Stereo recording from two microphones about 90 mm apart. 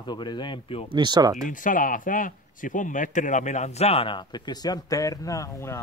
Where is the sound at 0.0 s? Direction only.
55° left (ahead or behind); by 0.8 s 75° left (ahead or behind).